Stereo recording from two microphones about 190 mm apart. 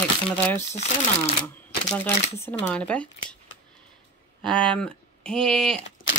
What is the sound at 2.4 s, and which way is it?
Speech, 10° left (ahead or behind).